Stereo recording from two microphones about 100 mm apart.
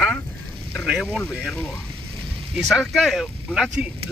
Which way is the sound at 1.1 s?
10° left (ahead or behind).